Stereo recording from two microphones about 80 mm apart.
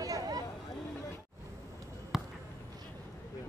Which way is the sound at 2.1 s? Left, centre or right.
Centre.